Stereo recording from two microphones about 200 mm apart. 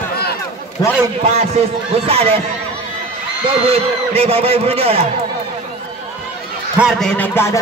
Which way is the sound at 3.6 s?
30° right (ahead or behind).